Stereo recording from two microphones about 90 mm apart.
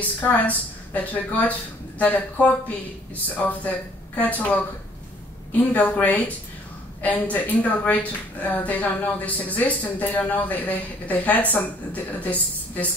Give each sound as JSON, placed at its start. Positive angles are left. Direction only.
{"t": 0.2, "sound": "a woman's voice", "side_deg": 15}
{"t": 3.4, "sound": "speech", "side_deg": 20}
{"t": 5.7, "sound": "a woman's voice", "side_deg": 20}